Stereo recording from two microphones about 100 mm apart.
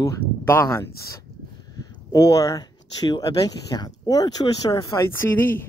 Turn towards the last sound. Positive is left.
turn(degrees=20)  # may be behind; listen again after turning